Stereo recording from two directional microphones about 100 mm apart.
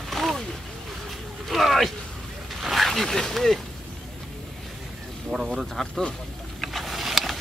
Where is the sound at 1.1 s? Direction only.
Centre (ahead or behind).